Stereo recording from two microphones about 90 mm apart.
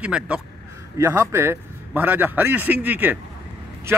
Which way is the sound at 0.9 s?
30° right (ahead or behind).